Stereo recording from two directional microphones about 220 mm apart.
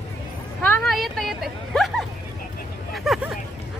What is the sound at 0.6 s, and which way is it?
Vehicle, 5° left (ahead or behind).